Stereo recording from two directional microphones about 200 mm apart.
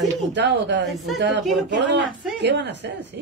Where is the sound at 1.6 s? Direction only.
60° right (ahead or behind).